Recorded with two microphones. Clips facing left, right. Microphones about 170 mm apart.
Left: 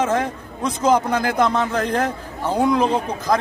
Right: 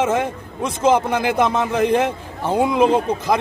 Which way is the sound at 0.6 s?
25° right (ahead or behind).